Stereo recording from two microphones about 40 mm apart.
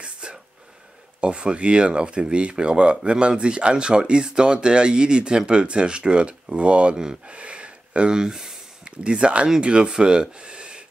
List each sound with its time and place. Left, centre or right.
0.0 s whispering: right
1.2 s speech: right
7.2 s a sound: right; by 8.9 s centre
8.9 s speech: right